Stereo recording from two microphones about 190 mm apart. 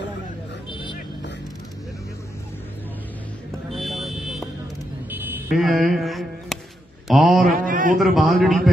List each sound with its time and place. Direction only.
0.7 s vehicle: 25° left (ahead or behind)
3.7 s vehicle: centre (ahead or behind)
5.1 s a sound: 10° right (ahead or behind)
5.5 s mantra: centre (ahead or behind)
7.1 s a man's voice: centre (ahead or behind)
7.5 s a man's voice: 45° right (ahead or behind)
8.0 s a man's voice: centre (ahead or behind)